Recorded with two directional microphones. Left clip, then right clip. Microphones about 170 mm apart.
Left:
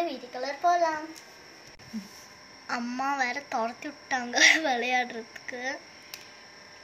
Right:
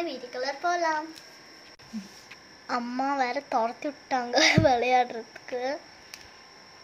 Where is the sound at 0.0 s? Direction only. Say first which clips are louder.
Even; 10° right (ahead or behind).